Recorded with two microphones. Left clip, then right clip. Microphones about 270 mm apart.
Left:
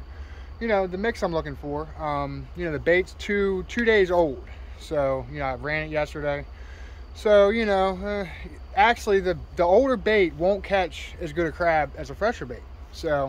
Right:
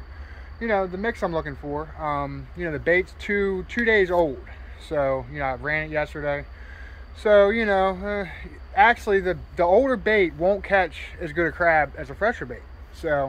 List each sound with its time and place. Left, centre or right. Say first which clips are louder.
0.6 s speech: even; centre